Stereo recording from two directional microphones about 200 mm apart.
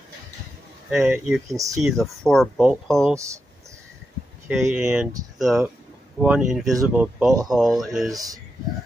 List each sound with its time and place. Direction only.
0.8 s speech: 5° right (ahead or behind)
4.5 s speech: 5° right (ahead or behind)
8.1 s a man's voice: 15° right (ahead or behind)